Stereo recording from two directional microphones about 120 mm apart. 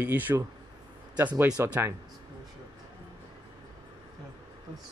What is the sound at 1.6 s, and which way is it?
Speech, 20° right (ahead or behind).